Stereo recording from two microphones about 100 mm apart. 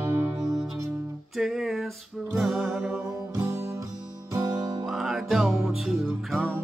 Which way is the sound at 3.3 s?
30° right (ahead or behind).